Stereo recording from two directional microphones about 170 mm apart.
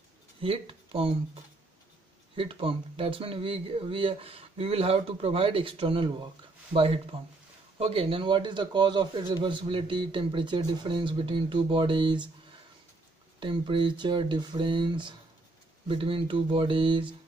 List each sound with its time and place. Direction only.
0.4 s a man's voice: 35° right (ahead or behind)
13.4 s a man's voice: 30° right (ahead or behind)